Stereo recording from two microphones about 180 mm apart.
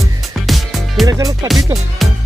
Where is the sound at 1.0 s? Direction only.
20° right (ahead or behind).